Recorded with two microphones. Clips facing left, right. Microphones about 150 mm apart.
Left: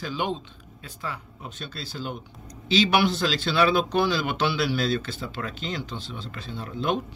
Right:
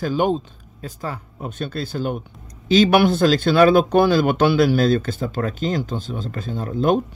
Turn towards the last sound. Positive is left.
turn(degrees=-45)  # may be behind; listen again after turning